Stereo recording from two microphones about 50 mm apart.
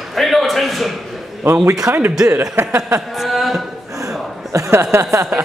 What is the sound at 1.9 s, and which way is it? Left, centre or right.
Speech, right.